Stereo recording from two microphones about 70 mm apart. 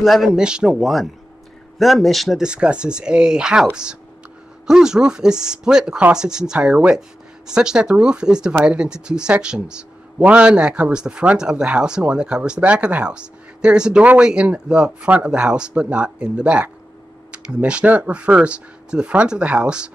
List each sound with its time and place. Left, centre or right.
0.0 s speech: centre
0.4 s speech: centre
2.4 s speech: centre